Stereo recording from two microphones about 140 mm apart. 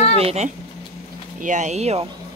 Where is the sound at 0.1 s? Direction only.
45° right (ahead or behind).